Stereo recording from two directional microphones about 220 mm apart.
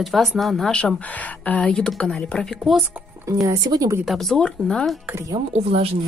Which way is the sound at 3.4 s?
15° right (ahead or behind).